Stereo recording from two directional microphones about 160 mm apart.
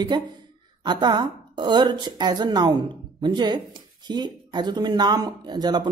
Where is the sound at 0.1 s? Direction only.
25° right (ahead or behind).